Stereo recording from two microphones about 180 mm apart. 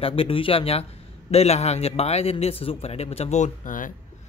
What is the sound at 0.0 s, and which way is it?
A man's voice, 30° left (ahead or behind).